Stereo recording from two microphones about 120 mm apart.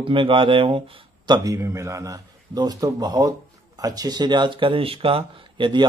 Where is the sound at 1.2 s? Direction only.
35° right (ahead or behind).